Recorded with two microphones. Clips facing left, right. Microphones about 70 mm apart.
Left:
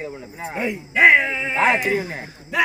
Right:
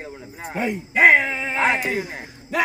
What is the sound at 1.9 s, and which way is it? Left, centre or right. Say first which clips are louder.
Speech: left 3 dB; left.